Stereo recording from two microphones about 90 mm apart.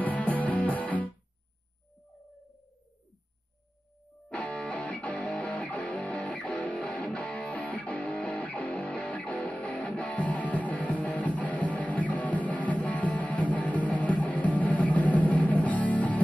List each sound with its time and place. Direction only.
0.0 s music: 20° left (ahead or behind)
4.3 s music: 15° left (ahead or behind)